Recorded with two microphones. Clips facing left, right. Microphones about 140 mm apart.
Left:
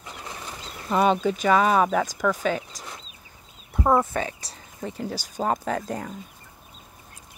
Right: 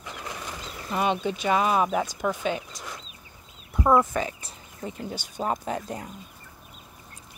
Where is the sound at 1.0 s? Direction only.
40° left (ahead or behind).